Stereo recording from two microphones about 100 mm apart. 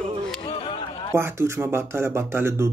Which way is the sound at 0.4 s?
60° left (ahead or behind).